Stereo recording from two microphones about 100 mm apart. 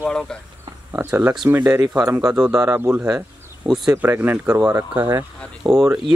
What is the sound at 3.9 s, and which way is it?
Speech, 20° right (ahead or behind).